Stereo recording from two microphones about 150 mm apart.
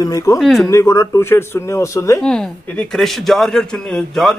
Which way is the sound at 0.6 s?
20° left (ahead or behind).